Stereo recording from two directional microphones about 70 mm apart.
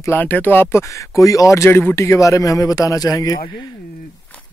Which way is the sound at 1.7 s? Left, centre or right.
Left.